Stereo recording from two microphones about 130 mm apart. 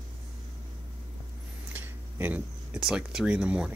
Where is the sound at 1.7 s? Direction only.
15° right (ahead or behind).